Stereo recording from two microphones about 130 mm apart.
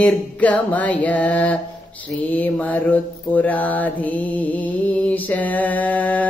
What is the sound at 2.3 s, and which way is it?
Mantra, 10° left (ahead or behind).